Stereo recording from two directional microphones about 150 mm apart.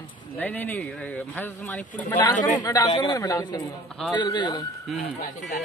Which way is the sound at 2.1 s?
30° left (ahead or behind).